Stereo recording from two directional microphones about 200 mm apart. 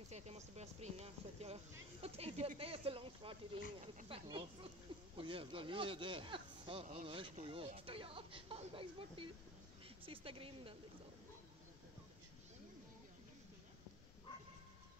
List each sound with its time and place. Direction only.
0.1 s speech: 35° right (ahead or behind)